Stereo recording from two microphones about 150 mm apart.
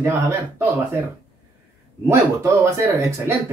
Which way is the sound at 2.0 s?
20° right (ahead or behind).